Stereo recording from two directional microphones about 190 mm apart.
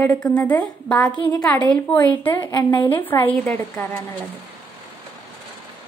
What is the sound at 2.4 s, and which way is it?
Speech, 20° left (ahead or behind).